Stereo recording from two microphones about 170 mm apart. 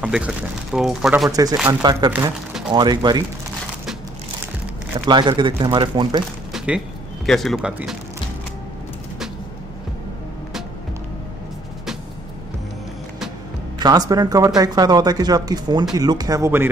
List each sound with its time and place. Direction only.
0.0 s speech: 5° right (ahead or behind)
1.3 s speech: 20° right (ahead or behind)
5.0 s speech: 25° right (ahead or behind)
6.5 s a sound: 5° right (ahead or behind)
7.2 s speech: centre (ahead or behind)
13.7 s speech: 25° right (ahead or behind)